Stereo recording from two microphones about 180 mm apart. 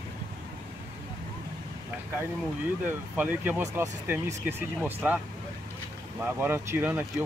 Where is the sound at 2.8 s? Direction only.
10° right (ahead or behind).